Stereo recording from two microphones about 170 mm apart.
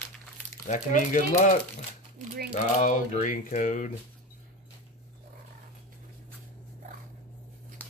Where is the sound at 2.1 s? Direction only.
55° right (ahead or behind).